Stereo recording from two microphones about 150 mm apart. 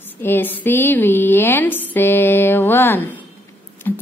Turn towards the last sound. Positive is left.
turn(degrees=15)  # may be behind; listen again after turning